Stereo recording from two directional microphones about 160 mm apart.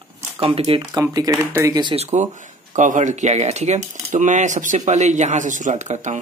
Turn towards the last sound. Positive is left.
turn(degrees=-50)  # may be behind; listen again after turning